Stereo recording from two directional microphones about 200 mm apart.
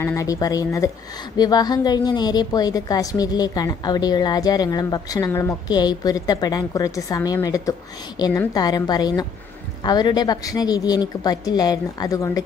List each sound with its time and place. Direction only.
0.0 s a woman's voice: 15° left (ahead or behind)